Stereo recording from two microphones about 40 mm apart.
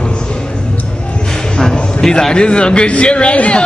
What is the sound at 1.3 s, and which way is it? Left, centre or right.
A man's voice, centre.